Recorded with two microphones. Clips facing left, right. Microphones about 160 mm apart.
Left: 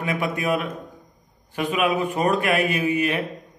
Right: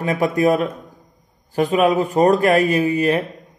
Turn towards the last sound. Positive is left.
turn(degrees=-40)  # may be behind; listen again after turning